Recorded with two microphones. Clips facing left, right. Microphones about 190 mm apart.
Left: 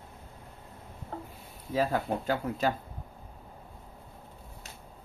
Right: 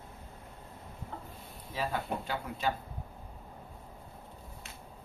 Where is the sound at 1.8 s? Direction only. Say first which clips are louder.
Left 6 dB; 45° left (ahead or behind).